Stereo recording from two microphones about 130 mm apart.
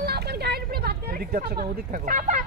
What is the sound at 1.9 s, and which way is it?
Speech, 90° right.